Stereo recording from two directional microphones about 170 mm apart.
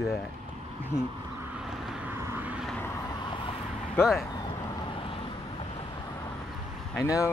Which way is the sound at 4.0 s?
Centre (ahead or behind).